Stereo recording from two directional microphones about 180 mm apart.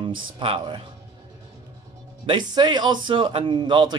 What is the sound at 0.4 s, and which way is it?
Speech, 30° right (ahead or behind).